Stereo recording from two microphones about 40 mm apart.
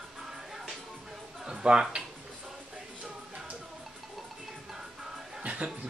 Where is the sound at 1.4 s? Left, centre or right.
Centre.